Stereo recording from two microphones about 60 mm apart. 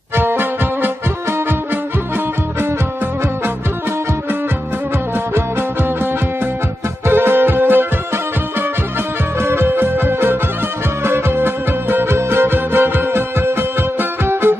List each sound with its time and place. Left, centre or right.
0.2 s music: right
7.1 s music: right
9.4 s music: right